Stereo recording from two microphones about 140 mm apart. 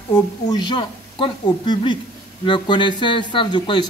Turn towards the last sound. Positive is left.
turn(degrees=35)  # may be behind; listen again after turning